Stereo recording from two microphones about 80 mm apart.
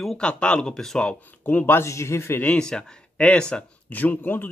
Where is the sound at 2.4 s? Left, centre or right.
Centre.